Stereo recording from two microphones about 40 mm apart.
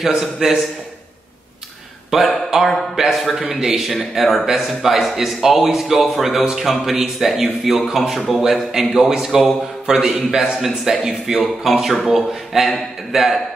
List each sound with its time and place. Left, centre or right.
0.0 s a man's voice: centre
2.0 s a man's voice: centre